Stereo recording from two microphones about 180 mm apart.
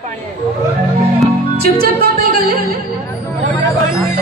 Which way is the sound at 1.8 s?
55° right (ahead or behind).